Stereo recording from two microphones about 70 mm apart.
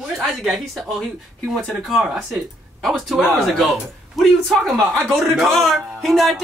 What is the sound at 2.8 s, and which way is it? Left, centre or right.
Speech, centre.